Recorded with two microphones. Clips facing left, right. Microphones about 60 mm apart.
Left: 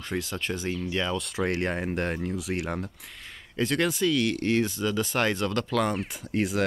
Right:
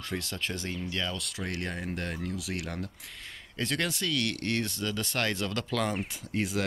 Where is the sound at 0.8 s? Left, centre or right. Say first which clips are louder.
Left 5 dB; centre.